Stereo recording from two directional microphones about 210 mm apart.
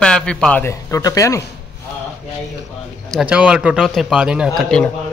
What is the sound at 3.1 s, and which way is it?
A man's voice, 5° right (ahead or behind).